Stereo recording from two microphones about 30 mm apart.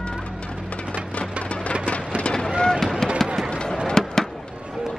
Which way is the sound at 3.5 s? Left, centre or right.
Left.